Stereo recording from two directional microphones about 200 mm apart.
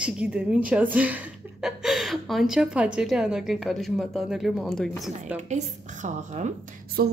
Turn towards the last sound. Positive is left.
turn(degrees=-50)  # may be behind; listen again after turning